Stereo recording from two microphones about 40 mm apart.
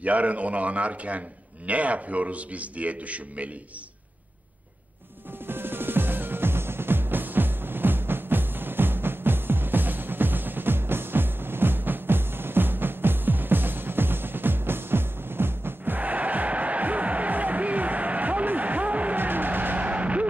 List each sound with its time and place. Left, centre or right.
0.0 s a man's voice: right
5.5 s music: right
15.8 s music: right
19.1 s music: right
19.8 s music: right